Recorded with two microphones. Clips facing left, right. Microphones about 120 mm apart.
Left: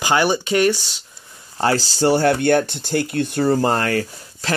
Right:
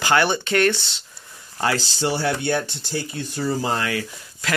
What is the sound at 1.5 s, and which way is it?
Speech, 35° left (ahead or behind).